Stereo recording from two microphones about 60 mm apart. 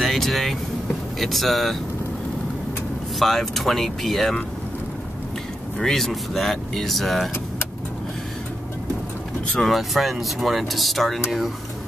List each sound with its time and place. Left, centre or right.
0.0 s speech: centre
3.2 s speech: centre
5.8 s speech: centre
9.6 s speech: centre